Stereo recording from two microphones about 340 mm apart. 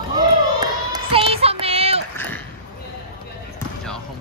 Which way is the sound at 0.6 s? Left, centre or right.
Centre.